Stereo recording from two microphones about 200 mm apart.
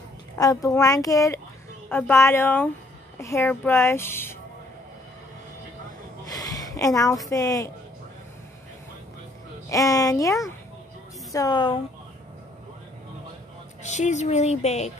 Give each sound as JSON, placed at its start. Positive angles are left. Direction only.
{"t": 0.4, "sound": "a woman's voice", "side_deg": 15}
{"t": 6.2, "sound": "a sound", "side_deg": 20}
{"t": 7.2, "sound": "a woman's voice", "side_deg": 15}
{"t": 9.7, "sound": "a woman's voice", "side_deg": 15}
{"t": 13.8, "sound": "speech", "side_deg": 35}